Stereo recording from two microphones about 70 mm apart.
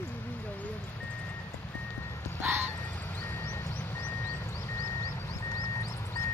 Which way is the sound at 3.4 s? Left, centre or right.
Left.